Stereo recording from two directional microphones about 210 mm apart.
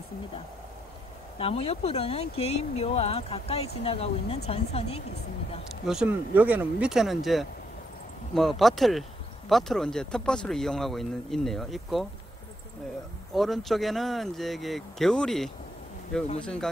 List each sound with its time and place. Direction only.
1.4 s speech: 30° left (ahead or behind)
5.9 s speech: 5° right (ahead or behind)
13.3 s speech: centre (ahead or behind)